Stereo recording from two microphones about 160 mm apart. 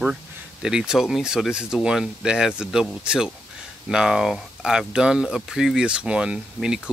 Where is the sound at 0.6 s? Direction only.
5° right (ahead or behind).